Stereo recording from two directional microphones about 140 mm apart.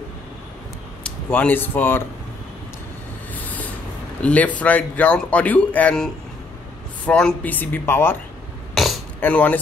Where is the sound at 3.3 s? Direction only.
10° left (ahead or behind).